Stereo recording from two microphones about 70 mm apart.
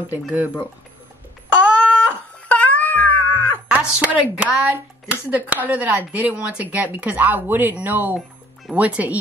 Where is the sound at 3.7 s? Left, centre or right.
Right.